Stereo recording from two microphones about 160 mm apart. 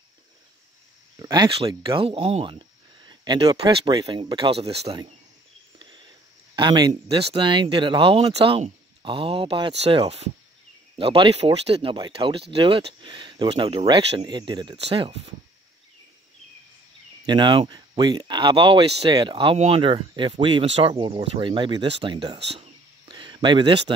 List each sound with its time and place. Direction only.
1.2 s speech: 25° right (ahead or behind)
6.5 s speech: 30° right (ahead or behind)
17.3 s speech: 30° right (ahead or behind)
22.5 s cricket: 35° right (ahead or behind)